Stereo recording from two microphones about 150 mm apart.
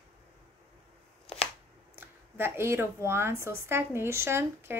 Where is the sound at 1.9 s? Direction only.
15° right (ahead or behind).